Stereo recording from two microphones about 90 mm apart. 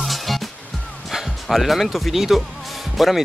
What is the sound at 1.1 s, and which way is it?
Speech, centre (ahead or behind).